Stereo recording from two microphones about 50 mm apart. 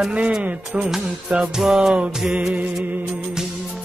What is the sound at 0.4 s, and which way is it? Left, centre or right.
Music, right.